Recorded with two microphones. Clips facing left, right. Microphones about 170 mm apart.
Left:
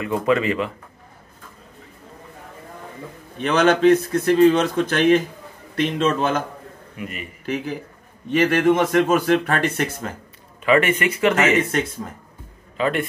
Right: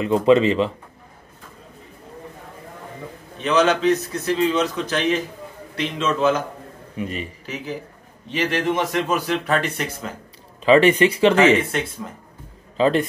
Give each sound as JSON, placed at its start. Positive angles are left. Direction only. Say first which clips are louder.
{"t": 0.0, "sound": "speech", "louder": "right 5 dB", "side_deg": -25}
{"t": 3.3, "sound": "a man's voice", "louder": "left 1 dB", "side_deg": 55}
{"t": 7.0, "sound": "speech", "louder": "right 5 dB", "side_deg": -25}
{"t": 7.4, "sound": "a man's voice", "louder": "left 4 dB", "side_deg": 55}
{"t": 10.6, "sound": "speech", "louder": "right 4 dB", "side_deg": -30}
{"t": 12.7, "sound": "a man's voice", "louder": "right 4 dB", "side_deg": -30}